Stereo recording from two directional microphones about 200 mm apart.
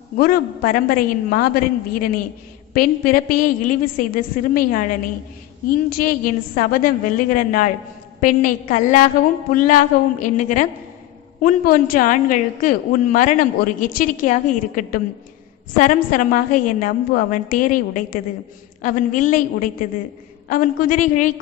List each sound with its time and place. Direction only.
0.2 s a woman's voice: 45° left (ahead or behind)